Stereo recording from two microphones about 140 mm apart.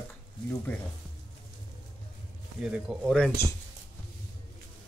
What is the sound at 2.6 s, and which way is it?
Speech, 5° right (ahead or behind).